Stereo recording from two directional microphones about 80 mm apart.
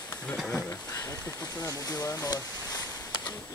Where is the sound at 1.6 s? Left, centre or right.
Left.